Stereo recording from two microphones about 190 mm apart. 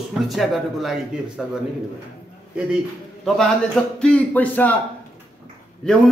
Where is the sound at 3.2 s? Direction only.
Centre (ahead or behind).